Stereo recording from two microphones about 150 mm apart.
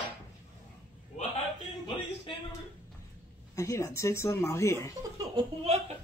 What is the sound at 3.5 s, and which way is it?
Speech, 20° left (ahead or behind).